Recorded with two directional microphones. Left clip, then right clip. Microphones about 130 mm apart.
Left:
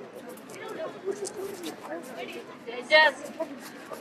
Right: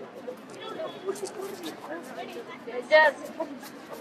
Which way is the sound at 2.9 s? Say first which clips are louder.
Even; 30° left (ahead or behind).